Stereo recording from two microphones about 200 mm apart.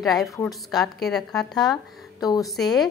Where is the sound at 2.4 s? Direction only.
Centre (ahead or behind).